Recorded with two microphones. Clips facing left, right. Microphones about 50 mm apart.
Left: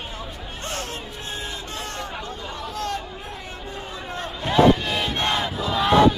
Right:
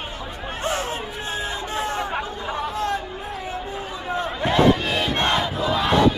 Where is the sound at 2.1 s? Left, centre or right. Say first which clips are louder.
Right 6 dB; right.